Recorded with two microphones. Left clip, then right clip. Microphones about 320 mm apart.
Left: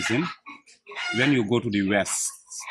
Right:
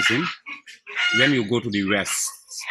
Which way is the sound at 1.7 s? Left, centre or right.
Centre.